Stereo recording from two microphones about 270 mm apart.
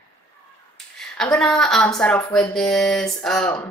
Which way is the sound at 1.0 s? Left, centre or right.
Centre.